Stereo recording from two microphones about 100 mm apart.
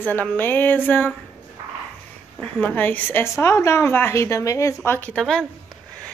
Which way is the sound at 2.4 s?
15° left (ahead or behind).